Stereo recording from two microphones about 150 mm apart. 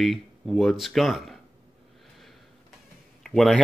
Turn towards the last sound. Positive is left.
turn(degrees=0)  # may be behind; listen again after turning